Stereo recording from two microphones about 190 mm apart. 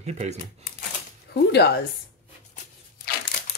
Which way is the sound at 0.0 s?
35° right (ahead or behind).